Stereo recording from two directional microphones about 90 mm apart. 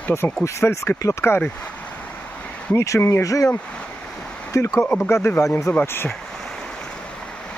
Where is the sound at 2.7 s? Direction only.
30° left (ahead or behind).